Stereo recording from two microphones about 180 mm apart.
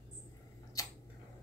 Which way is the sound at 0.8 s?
20° left (ahead or behind).